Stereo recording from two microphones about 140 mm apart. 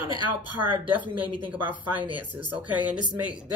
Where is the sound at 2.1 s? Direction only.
10° right (ahead or behind).